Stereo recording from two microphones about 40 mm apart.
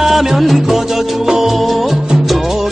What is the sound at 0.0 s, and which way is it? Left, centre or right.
Music, centre.